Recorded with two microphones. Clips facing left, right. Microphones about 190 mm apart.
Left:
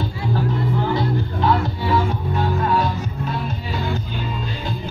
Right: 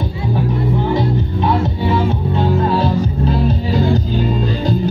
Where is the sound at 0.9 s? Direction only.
20° right (ahead or behind).